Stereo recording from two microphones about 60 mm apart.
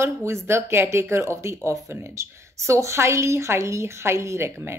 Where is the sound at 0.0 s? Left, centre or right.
Right.